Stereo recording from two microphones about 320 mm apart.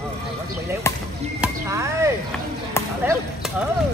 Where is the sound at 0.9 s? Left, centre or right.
Centre.